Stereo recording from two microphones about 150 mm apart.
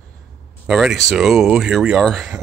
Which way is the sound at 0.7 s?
5° right (ahead or behind).